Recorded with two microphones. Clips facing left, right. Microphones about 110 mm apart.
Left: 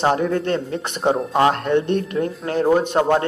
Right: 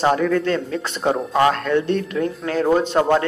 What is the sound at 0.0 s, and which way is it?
A man's voice, 25° left (ahead or behind).